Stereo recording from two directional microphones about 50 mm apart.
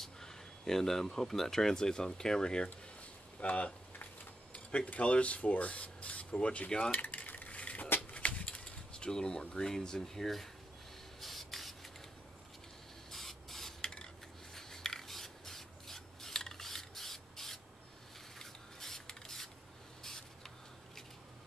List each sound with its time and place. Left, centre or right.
0.0 s speech: centre
3.3 s speech: left
6.9 s cutlery: left
8.1 s a sound: left; by 10.5 s centre
11.1 s spray: centre
13.1 s spray: centre
13.7 s filing: centre
14.5 s rub: centre
18.4 s a sound: centre